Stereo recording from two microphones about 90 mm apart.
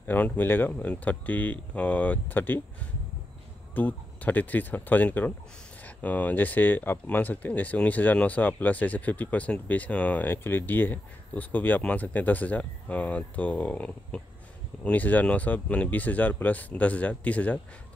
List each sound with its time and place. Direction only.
0.0 s speech: 20° left (ahead or behind)
3.7 s speech: 20° left (ahead or behind)